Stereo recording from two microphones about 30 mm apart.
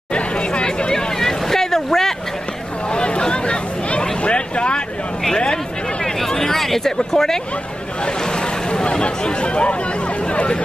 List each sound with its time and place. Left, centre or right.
0.1 s chatter: left
1.2 s boat: centre
2.9 s a sound: left
4.2 s vehicle: left
6.3 s a sound: centre
6.6 s speech: centre
9.0 s speech: left